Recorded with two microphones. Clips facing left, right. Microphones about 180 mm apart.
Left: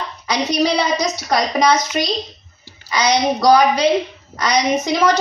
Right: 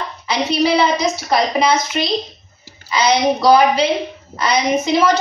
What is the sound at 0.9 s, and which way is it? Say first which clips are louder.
Speech: right 1 dB; 30° right (ahead or behind).